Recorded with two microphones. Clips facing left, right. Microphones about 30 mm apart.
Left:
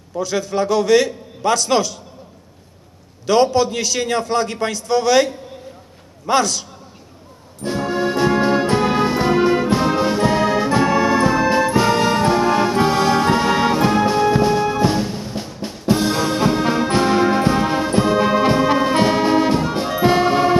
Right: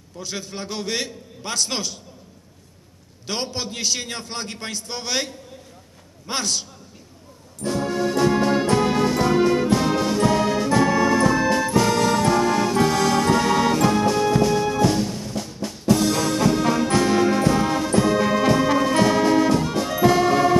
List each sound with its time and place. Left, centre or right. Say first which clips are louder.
0.3 s a man's voice: left 12 dB; left
3.3 s a man's voice: left 13 dB; left
7.6 s music: left 3 dB; left